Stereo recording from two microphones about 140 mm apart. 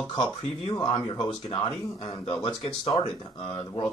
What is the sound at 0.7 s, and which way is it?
Speech, 30° left (ahead or behind).